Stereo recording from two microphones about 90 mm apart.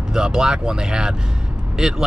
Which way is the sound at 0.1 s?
10° right (ahead or behind).